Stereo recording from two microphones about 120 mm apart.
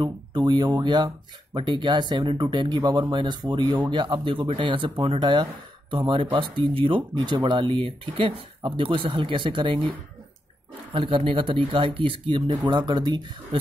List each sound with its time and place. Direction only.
0.0 s speech: 35° right (ahead or behind)